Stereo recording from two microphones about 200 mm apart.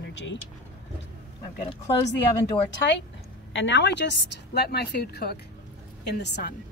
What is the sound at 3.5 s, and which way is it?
Speech, 65° left (ahead or behind).